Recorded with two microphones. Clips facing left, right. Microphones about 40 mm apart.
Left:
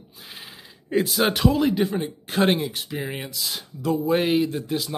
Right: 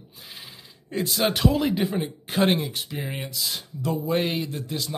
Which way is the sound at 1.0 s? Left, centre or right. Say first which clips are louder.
Even; centre.